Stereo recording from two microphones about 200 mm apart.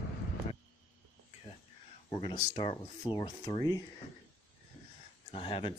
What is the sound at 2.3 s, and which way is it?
Speech, 30° left (ahead or behind).